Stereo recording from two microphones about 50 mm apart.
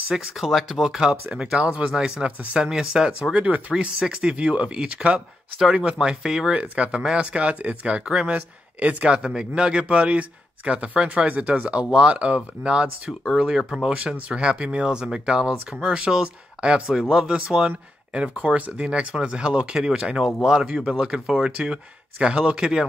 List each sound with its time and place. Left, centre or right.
0.1 s speech: centre
1.6 s speech: right
3.3 s speech: right
3.7 s speech: centre
5.6 s speech: centre
6.5 s speech: right
13.9 s speech: right
17.1 s speech: centre
22.2 s speech: right